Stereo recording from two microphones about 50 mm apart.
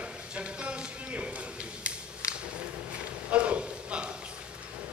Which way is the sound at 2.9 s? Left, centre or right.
Right.